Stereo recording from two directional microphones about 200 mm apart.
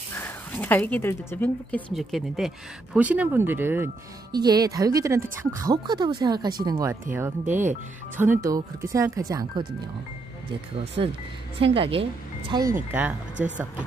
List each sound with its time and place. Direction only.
0.1 s speech: 10° left (ahead or behind); by 9.7 s 15° right (ahead or behind)
11.0 s a woman's voice: 25° right (ahead or behind)